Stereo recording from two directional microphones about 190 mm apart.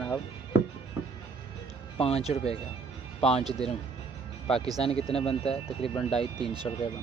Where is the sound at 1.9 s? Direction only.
30° left (ahead or behind).